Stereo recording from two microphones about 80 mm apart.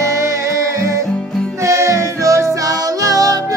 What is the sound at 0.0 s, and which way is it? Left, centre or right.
Music, right.